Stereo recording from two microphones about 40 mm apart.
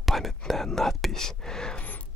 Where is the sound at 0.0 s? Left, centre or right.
Centre.